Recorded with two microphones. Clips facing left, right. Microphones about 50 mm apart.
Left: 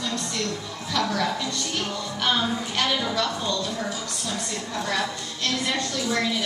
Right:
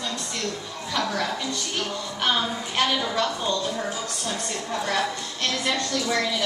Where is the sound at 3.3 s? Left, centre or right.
Right.